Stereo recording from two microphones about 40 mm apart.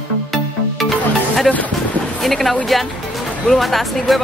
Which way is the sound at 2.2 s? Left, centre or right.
Centre.